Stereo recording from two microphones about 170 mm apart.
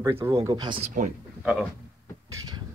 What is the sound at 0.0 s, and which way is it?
Speech, 20° right (ahead or behind).